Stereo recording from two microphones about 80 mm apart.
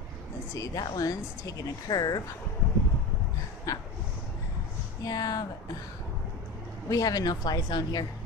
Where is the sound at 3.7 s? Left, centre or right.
Left.